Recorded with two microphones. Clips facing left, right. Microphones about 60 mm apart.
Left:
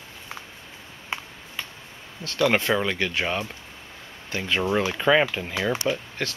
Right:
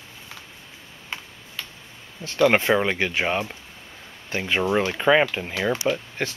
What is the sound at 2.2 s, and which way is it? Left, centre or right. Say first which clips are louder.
Speech: right 3 dB; centre.